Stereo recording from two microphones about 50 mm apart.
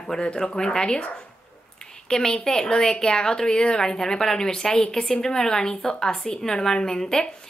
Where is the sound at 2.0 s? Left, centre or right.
Centre.